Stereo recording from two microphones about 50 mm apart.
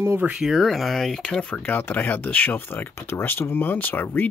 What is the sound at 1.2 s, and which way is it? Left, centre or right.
Speech, left.